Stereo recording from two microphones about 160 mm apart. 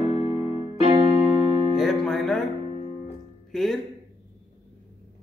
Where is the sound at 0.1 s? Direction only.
30° right (ahead or behind).